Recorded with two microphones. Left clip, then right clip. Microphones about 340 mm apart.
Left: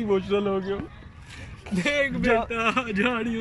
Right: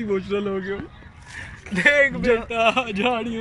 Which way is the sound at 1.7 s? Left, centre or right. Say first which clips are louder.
Right 8 dB; right.